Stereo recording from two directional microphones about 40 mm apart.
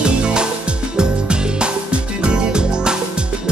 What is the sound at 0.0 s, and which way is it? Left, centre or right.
Music, right.